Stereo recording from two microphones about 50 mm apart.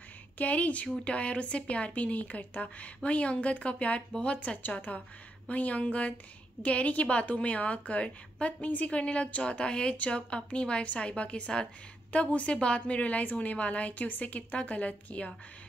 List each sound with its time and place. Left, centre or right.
0.4 s a woman's voice: left